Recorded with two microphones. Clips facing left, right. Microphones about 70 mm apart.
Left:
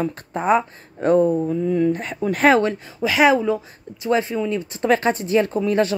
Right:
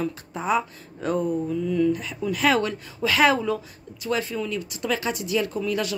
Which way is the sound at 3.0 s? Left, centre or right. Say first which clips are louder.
Left 4 dB; centre.